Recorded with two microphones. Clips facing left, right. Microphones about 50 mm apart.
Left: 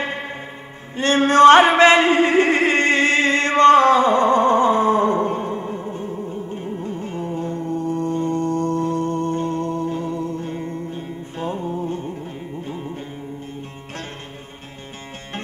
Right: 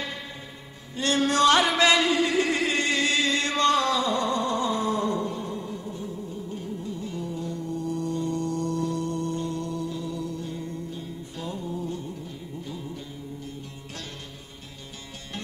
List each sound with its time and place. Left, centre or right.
0.0 s music: left
0.9 s chant: left